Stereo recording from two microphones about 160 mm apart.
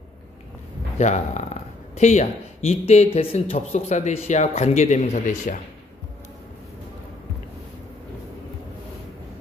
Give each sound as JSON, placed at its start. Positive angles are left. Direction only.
{"t": 0.9, "sound": "speech", "side_deg": 45}